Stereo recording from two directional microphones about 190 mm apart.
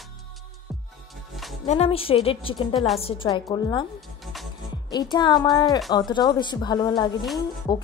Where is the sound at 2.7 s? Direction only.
Centre (ahead or behind).